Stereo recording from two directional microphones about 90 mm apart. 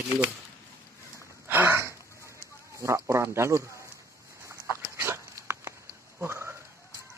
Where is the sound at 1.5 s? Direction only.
25° right (ahead or behind).